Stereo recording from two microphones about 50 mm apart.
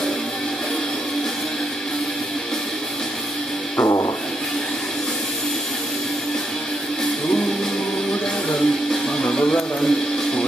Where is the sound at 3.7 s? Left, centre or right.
Left.